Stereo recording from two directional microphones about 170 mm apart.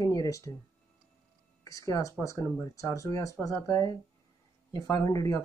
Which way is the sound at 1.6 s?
20° left (ahead or behind).